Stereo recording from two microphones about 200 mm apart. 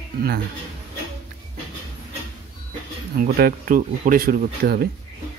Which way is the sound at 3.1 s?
50° right (ahead or behind).